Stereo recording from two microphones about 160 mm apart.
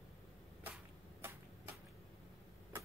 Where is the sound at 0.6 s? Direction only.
10° right (ahead or behind).